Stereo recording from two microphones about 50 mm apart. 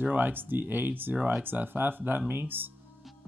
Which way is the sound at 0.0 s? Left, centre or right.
Right.